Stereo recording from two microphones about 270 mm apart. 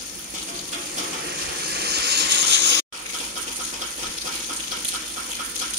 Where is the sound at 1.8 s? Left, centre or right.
Right.